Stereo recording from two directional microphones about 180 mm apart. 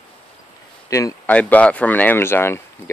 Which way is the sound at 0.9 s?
15° left (ahead or behind).